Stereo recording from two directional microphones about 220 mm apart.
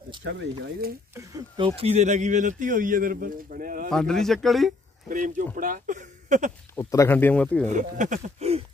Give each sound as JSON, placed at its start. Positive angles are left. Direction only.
{"t": 0.2, "sound": "speech", "side_deg": -50}
{"t": 1.1, "sound": "speech", "side_deg": -15}
{"t": 1.8, "sound": "a man's voice", "side_deg": -30}
{"t": 3.9, "sound": "speech", "side_deg": 0}
{"t": 5.1, "sound": "a man's voice", "side_deg": -35}
{"t": 6.7, "sound": "speech", "side_deg": 15}
{"t": 7.7, "sound": "a man's voice", "side_deg": -35}